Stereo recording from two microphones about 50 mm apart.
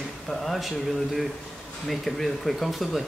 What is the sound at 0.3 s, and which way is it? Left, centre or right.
Speech, centre.